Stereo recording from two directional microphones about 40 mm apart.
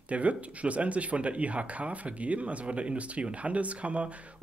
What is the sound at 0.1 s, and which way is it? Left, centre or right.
Speech, right.